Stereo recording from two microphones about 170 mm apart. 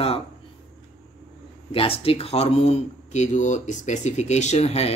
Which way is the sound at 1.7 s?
35° left (ahead or behind).